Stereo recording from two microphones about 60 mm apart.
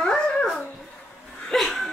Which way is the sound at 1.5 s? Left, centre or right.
Centre.